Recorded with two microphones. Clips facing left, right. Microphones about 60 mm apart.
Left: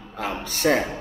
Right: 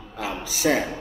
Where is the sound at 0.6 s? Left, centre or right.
Centre.